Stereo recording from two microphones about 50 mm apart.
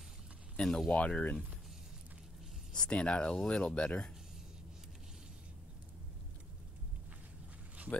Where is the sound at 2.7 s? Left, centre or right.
Centre.